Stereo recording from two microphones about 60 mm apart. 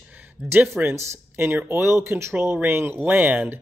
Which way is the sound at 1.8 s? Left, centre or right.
Right.